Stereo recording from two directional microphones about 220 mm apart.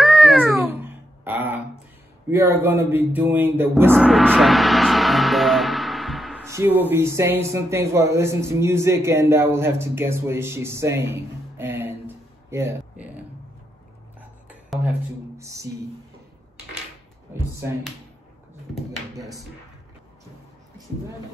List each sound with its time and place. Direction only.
0.0 s cat: centre (ahead or behind)
2.3 s speech: 10° right (ahead or behind)
3.9 s gong: centre (ahead or behind)
6.4 s speech: 10° right (ahead or behind)
15.3 s music: 15° right (ahead or behind)
19.1 s a sound: 15° right (ahead or behind)